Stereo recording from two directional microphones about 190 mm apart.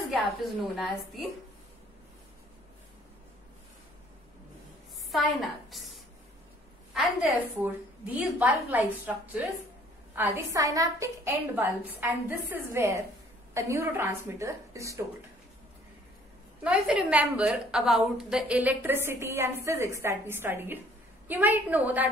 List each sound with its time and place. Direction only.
0.7 s a woman's voice: centre (ahead or behind)
5.1 s a woman's voice: centre (ahead or behind)
6.9 s a woman's voice: 5° right (ahead or behind)
16.6 s a woman's voice: 5° right (ahead or behind)